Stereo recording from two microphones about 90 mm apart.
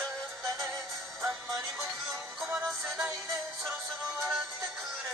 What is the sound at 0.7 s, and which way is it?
Synthetic singing, 5° right (ahead or behind).